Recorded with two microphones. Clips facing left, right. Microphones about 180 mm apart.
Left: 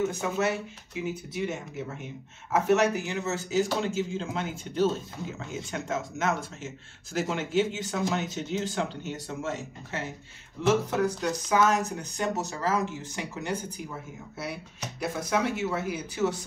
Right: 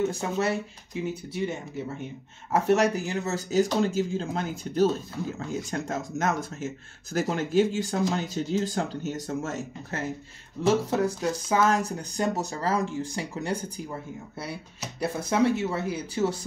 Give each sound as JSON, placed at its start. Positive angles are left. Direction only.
{"t": 0.2, "sound": "speech", "side_deg": -30}
{"t": 10.6, "sound": "speech", "side_deg": -30}
{"t": 15.0, "sound": "speech", "side_deg": -30}